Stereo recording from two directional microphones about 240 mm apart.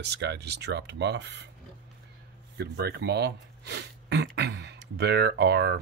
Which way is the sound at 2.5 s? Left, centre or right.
Right.